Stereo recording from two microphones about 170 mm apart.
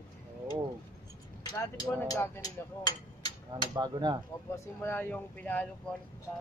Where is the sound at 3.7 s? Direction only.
25° right (ahead or behind).